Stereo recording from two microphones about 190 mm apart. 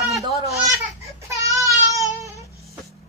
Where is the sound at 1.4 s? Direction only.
15° right (ahead or behind).